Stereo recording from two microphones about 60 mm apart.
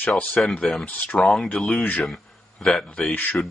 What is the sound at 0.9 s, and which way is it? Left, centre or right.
Speech, left.